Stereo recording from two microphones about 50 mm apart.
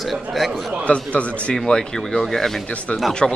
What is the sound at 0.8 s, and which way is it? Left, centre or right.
Speech, left.